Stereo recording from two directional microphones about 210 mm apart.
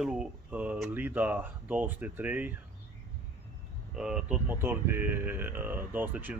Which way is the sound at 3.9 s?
5° right (ahead or behind).